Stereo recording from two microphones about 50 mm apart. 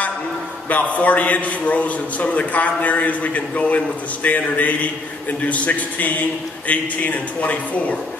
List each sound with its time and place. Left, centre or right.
0.7 s a man's voice: left